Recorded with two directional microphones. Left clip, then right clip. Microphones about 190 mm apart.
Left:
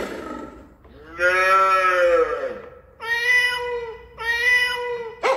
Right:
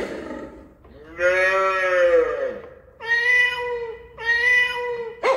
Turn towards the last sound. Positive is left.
turn(degrees=15)  # may be behind; listen again after turning